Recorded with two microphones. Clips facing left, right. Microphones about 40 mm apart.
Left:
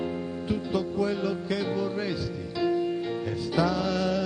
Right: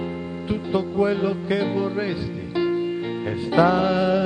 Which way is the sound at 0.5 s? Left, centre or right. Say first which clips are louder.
Right 5 dB; right.